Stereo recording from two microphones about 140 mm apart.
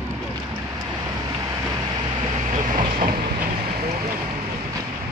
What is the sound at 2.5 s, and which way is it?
Train, 75° right (ahead or behind).